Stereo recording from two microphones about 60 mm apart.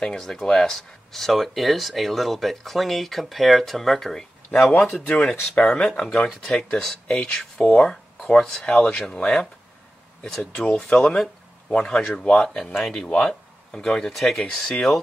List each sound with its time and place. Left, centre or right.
0.0 s speech: centre
4.9 s speech: left
5.6 s speech: centre
10.9 s speech: centre